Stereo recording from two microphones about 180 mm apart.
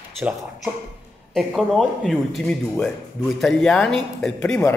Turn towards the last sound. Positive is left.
turn(degrees=10)  # may be behind; listen again after turning